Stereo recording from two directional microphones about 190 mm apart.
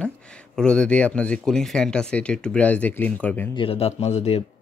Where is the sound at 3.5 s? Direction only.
30° left (ahead or behind).